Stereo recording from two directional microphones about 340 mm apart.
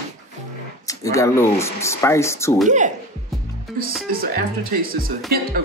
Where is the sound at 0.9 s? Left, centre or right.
Centre.